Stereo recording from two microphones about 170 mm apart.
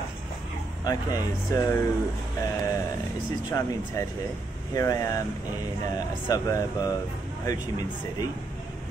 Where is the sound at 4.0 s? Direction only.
20° left (ahead or behind).